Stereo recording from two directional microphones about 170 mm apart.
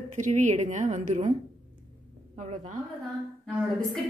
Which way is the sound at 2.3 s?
45° right (ahead or behind).